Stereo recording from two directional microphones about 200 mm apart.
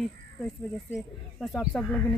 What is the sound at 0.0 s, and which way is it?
Speech, centre (ahead or behind).